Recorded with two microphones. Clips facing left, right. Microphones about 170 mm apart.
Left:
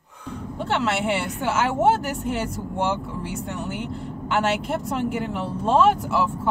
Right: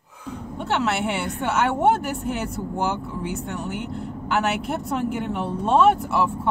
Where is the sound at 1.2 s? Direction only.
Centre (ahead or behind).